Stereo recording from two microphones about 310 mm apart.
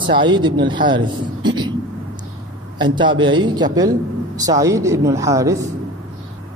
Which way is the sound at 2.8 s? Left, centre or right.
Centre.